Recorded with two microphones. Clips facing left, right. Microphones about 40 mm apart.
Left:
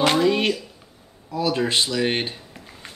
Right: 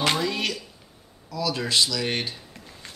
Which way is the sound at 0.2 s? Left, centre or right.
Left.